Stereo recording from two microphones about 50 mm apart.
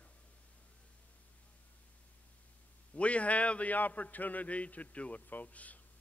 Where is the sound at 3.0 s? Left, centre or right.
Left.